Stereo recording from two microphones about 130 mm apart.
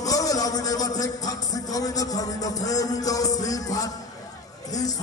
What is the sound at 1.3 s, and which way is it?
A man's voice, 30° left (ahead or behind).